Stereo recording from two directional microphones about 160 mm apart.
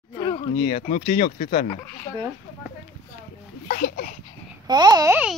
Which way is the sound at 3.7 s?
70° left (ahead or behind).